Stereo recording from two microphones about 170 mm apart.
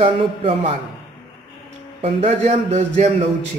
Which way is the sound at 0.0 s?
30° right (ahead or behind).